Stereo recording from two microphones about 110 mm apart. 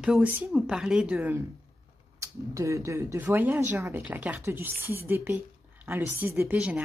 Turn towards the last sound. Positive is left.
turn(degrees=-10)  # may be behind; listen again after turning